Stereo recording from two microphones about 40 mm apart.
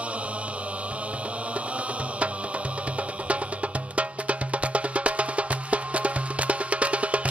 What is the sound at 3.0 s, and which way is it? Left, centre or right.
Music, right.